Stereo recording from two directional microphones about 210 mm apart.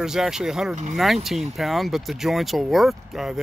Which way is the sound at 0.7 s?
35° right (ahead or behind).